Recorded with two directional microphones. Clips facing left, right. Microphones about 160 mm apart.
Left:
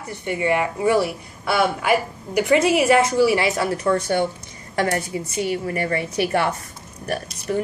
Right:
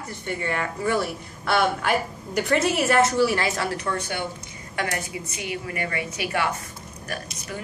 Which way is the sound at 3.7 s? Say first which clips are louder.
Left 8 dB; 30° left (ahead or behind).